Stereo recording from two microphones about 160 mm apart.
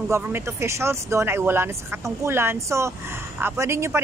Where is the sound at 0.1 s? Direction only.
15° right (ahead or behind).